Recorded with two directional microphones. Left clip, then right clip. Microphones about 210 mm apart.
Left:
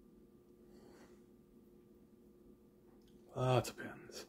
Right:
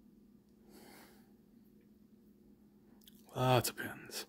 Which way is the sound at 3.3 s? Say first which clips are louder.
Right 4 dB; 35° right (ahead or behind).